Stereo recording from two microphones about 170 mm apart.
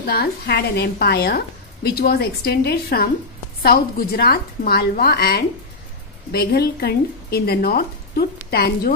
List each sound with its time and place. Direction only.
0.0 s a woman's voice: 65° left (ahead or behind)